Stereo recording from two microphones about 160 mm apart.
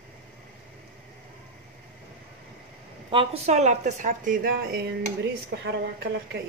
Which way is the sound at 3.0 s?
35° right (ahead or behind).